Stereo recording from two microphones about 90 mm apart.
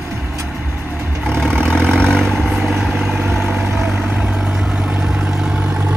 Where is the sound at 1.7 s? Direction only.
10° left (ahead or behind).